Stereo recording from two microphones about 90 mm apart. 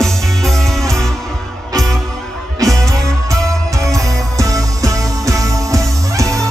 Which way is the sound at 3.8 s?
40° right (ahead or behind).